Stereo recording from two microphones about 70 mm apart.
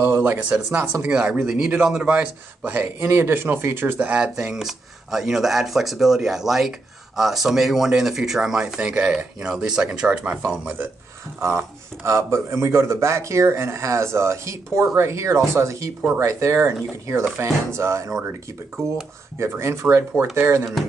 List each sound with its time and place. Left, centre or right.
0.0 s a sound: right
0.7 s speech: right
1.0 s speech: centre
1.4 s speech: centre; by 4.2 s right
4.2 s speech: centre
10.3 s speech: right
11.4 s a man's voice: right
19.3 s speech: right